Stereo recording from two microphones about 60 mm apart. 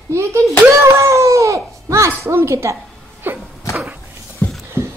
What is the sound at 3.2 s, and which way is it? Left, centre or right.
Sneeze, right.